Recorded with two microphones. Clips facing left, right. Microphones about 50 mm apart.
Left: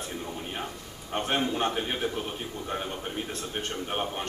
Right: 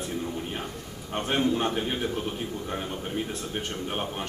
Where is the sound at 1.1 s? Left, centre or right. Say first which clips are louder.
Right 2 dB; centre.